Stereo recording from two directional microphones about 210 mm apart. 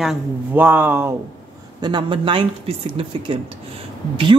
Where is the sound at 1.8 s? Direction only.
20° right (ahead or behind).